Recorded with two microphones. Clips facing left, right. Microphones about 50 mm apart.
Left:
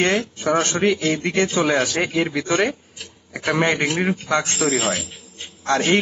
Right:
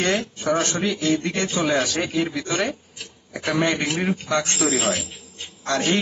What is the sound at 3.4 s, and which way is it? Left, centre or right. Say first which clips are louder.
Speech: left 2 dB; left.